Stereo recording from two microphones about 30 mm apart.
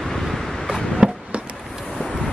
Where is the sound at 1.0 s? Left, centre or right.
Right.